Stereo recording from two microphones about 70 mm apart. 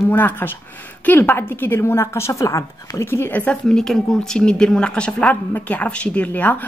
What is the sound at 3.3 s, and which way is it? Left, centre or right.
Speech, left.